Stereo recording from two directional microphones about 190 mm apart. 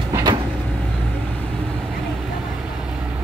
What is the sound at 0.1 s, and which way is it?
Vehicle, 20° right (ahead or behind).